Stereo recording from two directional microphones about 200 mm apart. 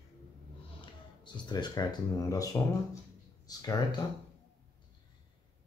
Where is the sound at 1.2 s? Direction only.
20° left (ahead or behind).